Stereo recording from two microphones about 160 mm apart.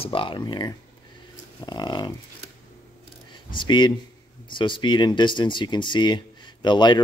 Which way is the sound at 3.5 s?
30° left (ahead or behind).